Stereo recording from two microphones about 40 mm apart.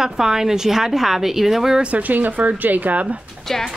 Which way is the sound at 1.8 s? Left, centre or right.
Right.